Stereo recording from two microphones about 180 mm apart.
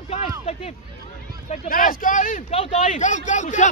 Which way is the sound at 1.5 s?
50° left (ahead or behind).